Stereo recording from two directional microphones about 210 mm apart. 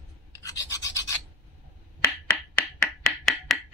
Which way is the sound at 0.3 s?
15° left (ahead or behind).